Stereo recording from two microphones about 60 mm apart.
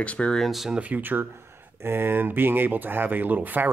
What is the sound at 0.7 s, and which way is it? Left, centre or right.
Speech, right.